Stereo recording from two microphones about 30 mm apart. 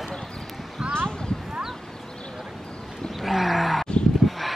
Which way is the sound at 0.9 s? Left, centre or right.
Left.